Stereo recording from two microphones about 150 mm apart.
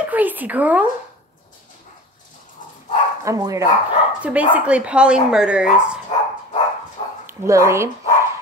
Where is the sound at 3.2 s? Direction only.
20° right (ahead or behind).